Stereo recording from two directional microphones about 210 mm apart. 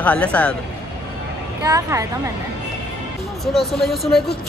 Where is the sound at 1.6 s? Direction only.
15° right (ahead or behind).